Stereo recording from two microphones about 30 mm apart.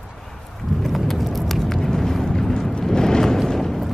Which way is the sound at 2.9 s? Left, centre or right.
Left.